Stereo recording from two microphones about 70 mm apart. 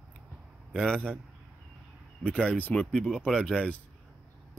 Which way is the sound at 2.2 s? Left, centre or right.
Centre.